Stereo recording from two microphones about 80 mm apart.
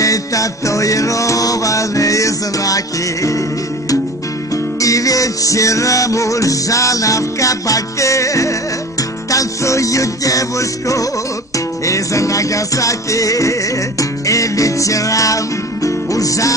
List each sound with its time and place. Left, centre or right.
0.0 s music: left
4.7 s music: left